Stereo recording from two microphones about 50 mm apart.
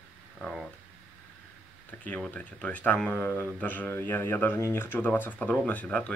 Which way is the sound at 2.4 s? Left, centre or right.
Left.